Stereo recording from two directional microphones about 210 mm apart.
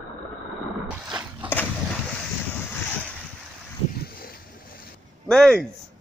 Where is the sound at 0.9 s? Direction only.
5° right (ahead or behind).